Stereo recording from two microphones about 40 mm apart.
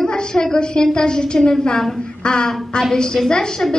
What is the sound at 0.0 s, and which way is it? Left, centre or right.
A woman's voice, centre.